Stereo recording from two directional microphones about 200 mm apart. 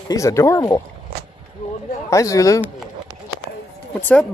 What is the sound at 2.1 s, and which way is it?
Speech, 15° left (ahead or behind).